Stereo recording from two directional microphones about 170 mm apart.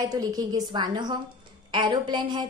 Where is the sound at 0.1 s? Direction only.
20° right (ahead or behind).